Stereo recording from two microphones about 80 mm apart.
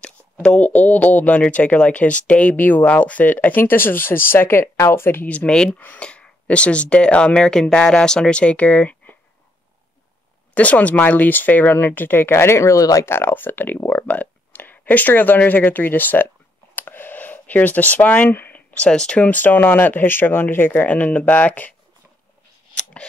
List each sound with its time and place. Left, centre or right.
0.0 s speech: centre; by 5.3 s left
5.3 s speech: centre
10.5 s speech: centre; by 13.0 s left
13.0 s speech: left